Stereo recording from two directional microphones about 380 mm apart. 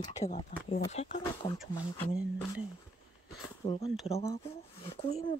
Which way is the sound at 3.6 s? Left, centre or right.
Centre.